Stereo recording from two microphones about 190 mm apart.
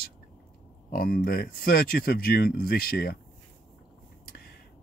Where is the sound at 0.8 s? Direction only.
50° left (ahead or behind).